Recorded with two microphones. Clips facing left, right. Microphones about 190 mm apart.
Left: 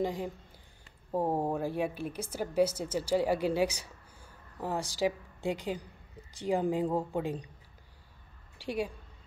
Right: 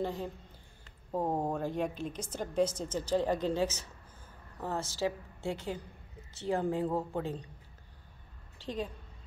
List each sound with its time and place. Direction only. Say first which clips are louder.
0.0 s a woman's voice: left 3 dB; 15° left (ahead or behind)
8.5 s a woman's voice: left 3 dB; 10° left (ahead or behind)